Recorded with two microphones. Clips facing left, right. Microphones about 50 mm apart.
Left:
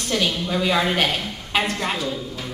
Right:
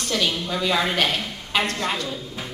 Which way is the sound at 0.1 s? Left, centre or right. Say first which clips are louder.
Left 2 dB; centre.